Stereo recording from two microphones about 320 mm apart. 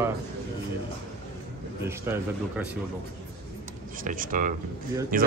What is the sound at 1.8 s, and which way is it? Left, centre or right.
A man's voice, centre.